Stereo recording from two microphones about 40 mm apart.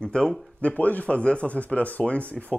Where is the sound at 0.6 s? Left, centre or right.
Left.